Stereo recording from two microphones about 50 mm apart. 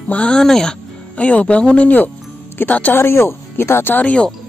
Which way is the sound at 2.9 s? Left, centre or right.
Left.